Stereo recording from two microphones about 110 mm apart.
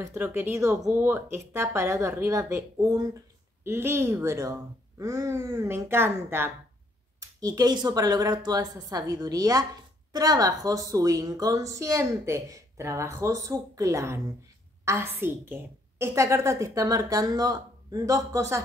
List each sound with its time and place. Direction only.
0.2 s a woman's voice: 20° right (ahead or behind)
7.2 s a woman's voice: 35° right (ahead or behind)